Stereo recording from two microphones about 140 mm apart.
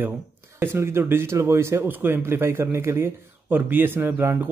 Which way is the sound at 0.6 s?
15° right (ahead or behind).